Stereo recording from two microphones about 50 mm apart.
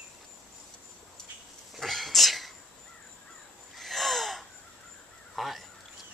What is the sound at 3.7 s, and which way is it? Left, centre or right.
Gasp, centre.